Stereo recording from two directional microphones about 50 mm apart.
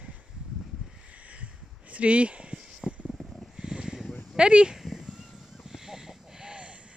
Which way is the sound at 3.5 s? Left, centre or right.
Centre.